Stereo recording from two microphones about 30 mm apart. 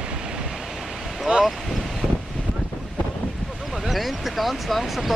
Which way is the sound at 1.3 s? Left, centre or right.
Right.